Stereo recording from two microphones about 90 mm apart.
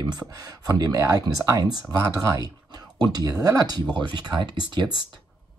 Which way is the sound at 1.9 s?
35° right (ahead or behind).